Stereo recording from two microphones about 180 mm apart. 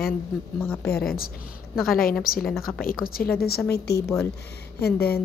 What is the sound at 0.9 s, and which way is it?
A woman's voice, 55° left (ahead or behind).